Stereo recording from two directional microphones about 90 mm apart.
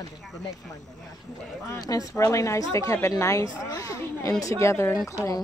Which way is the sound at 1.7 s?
40° left (ahead or behind).